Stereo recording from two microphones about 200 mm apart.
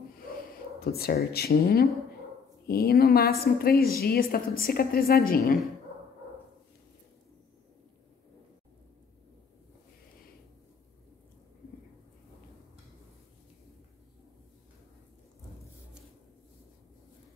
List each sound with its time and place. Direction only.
0.7 s a woman's voice: 50° left (ahead or behind)